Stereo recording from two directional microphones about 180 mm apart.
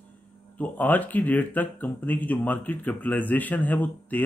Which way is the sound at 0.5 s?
10° left (ahead or behind).